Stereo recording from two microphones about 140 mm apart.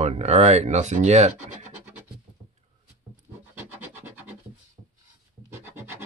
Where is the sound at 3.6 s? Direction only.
15° right (ahead or behind).